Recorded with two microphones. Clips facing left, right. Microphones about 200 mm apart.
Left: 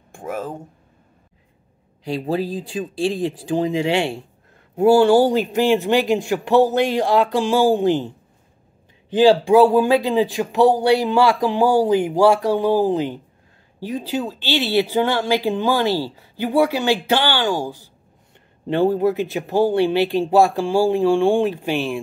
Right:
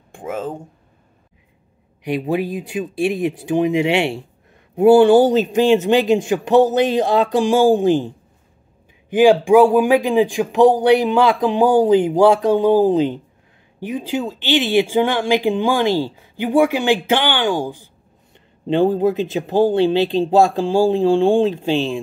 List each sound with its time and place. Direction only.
0.1 s a sound: 20° right (ahead or behind)
2.0 s speech: 20° right (ahead or behind)
9.1 s speech: 15° right (ahead or behind)